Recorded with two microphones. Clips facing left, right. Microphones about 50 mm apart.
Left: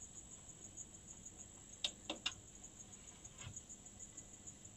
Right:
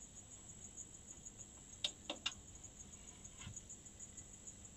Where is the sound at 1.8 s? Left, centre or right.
Centre.